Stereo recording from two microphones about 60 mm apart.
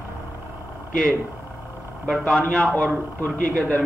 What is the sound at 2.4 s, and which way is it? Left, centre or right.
Speech, centre.